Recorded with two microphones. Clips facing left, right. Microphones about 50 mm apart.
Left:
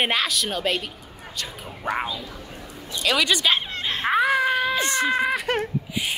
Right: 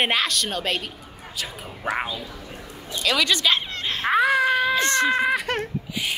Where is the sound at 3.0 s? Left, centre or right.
Centre.